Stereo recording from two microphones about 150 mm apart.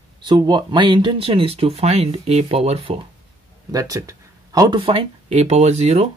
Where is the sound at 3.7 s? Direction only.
25° right (ahead or behind).